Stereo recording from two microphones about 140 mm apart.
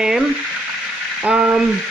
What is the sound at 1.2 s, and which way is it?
Speech, 5° right (ahead or behind).